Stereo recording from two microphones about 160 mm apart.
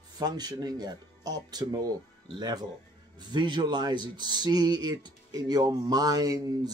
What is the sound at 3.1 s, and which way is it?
Speech, 30° right (ahead or behind).